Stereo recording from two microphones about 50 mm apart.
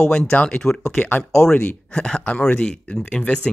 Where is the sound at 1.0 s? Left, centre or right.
Left.